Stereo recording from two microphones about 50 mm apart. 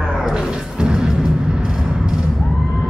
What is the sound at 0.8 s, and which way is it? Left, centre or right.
Music, centre.